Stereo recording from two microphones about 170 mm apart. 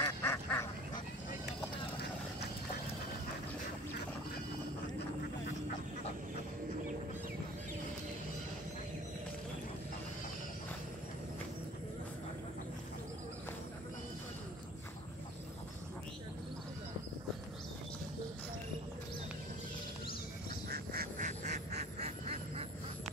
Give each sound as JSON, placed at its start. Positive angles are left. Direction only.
{"t": 0.0, "sound": "duck", "side_deg": 15}
{"t": 20.6, "sound": "duck", "side_deg": -60}